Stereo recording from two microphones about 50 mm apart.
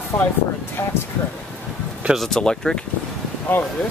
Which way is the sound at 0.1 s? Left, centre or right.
Left.